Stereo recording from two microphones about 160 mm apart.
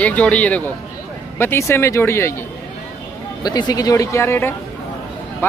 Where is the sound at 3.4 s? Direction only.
25° left (ahead or behind).